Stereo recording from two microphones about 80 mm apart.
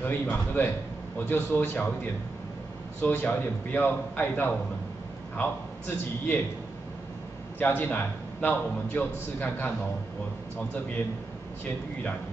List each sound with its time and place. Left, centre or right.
0.0 s a man's voice: left
3.0 s a man's voice: left
7.5 s a man's voice: left